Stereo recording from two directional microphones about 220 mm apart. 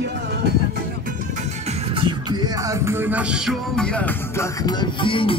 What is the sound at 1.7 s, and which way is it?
Music, 25° right (ahead or behind).